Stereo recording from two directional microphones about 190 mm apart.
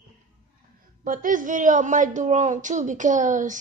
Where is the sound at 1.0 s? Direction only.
45° right (ahead or behind).